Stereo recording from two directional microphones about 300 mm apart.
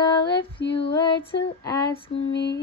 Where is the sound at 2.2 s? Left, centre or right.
Left.